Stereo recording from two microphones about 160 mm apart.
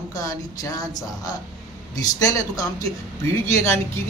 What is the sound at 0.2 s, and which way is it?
Speech, 20° left (ahead or behind).